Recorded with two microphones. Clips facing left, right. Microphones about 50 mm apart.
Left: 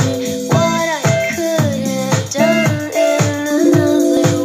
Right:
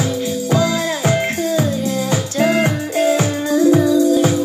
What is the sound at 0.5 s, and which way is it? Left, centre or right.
Music, left.